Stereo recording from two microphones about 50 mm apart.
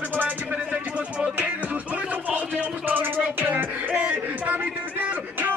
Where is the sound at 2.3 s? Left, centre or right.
Right.